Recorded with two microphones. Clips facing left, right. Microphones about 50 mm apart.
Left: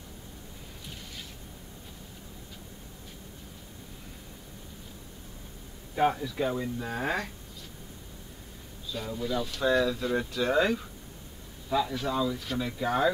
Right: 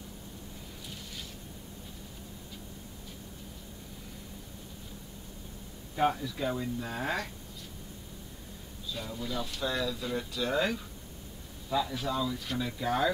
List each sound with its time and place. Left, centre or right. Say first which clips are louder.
5.9 s speech: left 3 dB; centre
8.9 s speech: left 5 dB; centre
9.6 s speech: left 8 dB; left